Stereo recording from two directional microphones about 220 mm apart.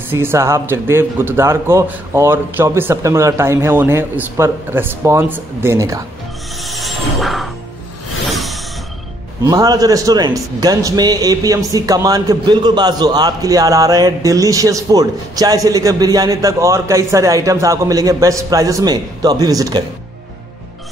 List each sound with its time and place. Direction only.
0.1 s a man's voice: 10° right (ahead or behind)
6.6 s music: centre (ahead or behind)
9.4 s a man's voice: 15° right (ahead or behind)